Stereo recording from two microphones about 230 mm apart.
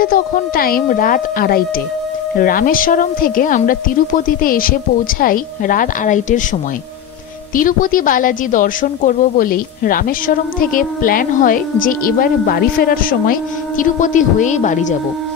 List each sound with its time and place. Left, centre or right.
0.0 s speech: left
7.5 s speech: left